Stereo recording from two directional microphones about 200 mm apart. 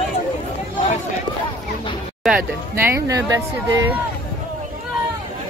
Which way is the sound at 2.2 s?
5° right (ahead or behind).